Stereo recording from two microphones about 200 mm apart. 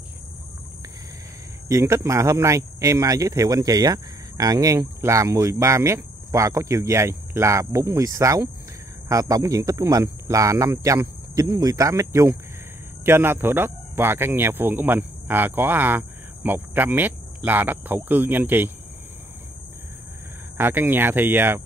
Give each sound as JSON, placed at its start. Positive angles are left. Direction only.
{"t": 1.7, "sound": "speech", "side_deg": -15}
{"t": 20.5, "sound": "speech", "side_deg": -10}